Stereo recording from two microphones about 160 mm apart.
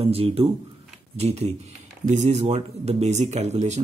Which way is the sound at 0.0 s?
35° right (ahead or behind).